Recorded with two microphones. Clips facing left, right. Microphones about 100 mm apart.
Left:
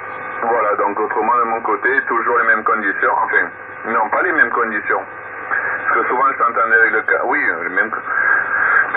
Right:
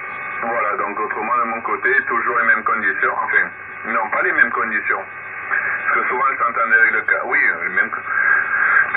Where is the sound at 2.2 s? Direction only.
20° left (ahead or behind).